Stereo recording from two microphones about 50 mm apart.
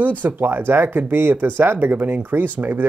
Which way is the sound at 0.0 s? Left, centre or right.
Right.